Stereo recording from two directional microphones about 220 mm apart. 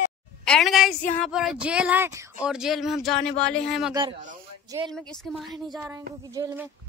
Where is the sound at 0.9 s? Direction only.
35° left (ahead or behind).